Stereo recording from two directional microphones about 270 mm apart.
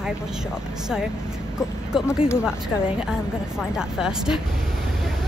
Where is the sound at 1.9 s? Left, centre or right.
Centre.